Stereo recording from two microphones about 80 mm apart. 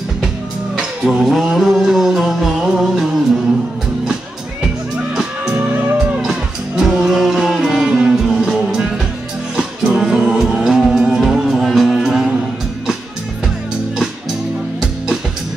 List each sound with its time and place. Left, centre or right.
0.7 s music: centre
6.8 s music: centre